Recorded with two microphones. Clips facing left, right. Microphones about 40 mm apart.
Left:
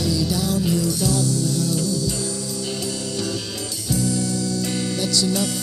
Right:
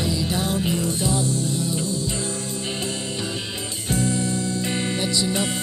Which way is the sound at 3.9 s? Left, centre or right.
Right.